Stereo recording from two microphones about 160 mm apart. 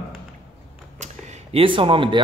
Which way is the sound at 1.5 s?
30° right (ahead or behind).